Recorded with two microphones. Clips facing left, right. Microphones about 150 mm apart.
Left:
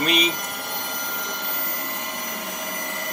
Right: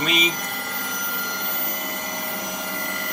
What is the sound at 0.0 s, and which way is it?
Speech, centre (ahead or behind).